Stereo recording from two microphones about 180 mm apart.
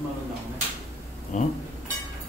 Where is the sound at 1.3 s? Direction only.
45° left (ahead or behind).